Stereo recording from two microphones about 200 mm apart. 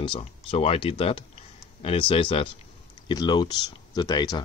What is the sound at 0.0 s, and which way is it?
Speech, 25° left (ahead or behind).